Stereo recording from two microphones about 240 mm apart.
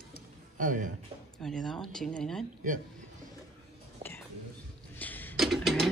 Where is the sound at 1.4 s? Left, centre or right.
Centre.